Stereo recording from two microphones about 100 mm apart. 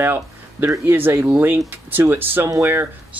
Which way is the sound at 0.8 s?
20° right (ahead or behind).